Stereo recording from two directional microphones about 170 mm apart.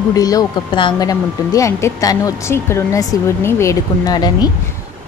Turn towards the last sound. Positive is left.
turn(degrees=25)  # may be behind; listen again after turning